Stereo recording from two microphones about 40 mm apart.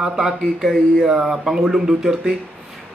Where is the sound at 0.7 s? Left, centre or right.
Centre.